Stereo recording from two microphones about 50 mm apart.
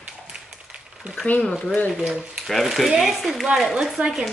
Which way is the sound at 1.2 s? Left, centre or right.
Left.